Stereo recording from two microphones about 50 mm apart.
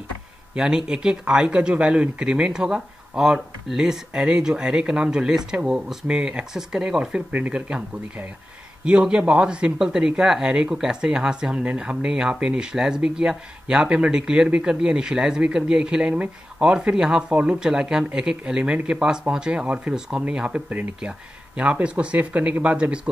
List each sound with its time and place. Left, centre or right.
0.6 s speech: centre
8.8 s speech: right
17.3 s speech: right
17.6 s speech: centre